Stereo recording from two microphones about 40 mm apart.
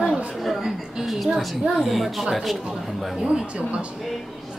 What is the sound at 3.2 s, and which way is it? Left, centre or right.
Speech, centre.